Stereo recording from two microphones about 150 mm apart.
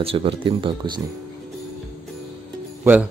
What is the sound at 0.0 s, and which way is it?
Speech, 40° right (ahead or behind).